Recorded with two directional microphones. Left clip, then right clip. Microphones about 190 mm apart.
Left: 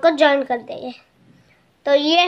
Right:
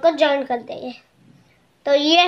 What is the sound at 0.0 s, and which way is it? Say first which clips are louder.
A woman's voice: left 2 dB; 20° left (ahead or behind).